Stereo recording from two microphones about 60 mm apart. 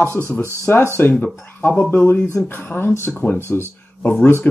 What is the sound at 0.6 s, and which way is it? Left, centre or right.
Speech, left.